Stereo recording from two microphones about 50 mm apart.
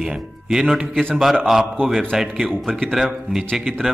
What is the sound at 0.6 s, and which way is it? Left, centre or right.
Speech, centre.